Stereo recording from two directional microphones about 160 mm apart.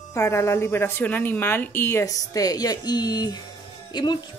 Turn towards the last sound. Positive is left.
turn(degrees=25)  # may be behind; listen again after turning